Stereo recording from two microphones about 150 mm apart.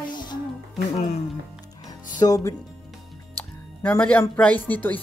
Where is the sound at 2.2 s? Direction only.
20° left (ahead or behind).